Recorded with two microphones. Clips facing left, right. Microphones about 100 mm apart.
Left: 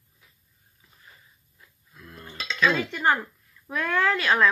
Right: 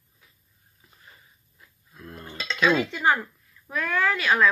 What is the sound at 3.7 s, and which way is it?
Speech, 5° right (ahead or behind).